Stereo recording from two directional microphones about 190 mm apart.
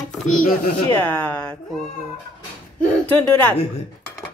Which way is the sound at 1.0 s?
5° left (ahead or behind).